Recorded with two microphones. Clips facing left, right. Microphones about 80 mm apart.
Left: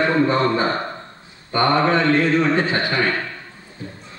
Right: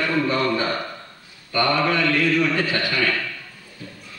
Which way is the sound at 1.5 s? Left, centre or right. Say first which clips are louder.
Left 3 dB; left.